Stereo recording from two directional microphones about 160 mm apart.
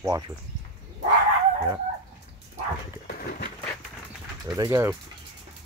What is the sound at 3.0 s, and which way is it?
Dog, 70° left (ahead or behind).